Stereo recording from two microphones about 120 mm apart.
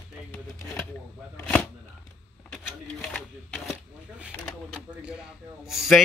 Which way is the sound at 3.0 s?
10° left (ahead or behind).